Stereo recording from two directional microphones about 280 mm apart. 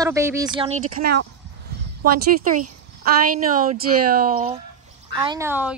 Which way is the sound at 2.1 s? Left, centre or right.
Right.